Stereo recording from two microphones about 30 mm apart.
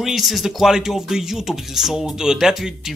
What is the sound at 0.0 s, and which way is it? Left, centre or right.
Speech, centre.